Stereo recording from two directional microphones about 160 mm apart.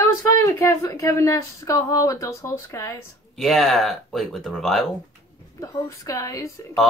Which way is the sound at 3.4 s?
Centre (ahead or behind).